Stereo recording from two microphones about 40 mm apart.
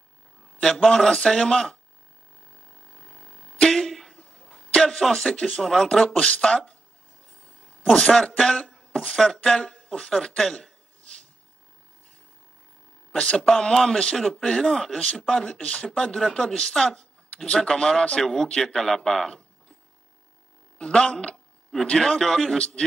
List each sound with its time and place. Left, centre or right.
0.6 s a man's voice: centre
2.5 s a sound: centre
3.7 s a sound: centre
4.8 s speech: centre
5.3 s speech: left
5.6 s a man's voice: centre
6.0 s speech: left
7.4 s a sound: left
8.4 s a man's voice: centre
13.1 s a man's voice: left
15.9 s a man's voice: centre
20.7 s a man's voice: left
22.6 s speech: left